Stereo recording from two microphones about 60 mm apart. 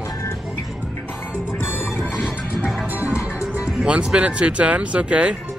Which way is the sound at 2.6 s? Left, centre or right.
Right.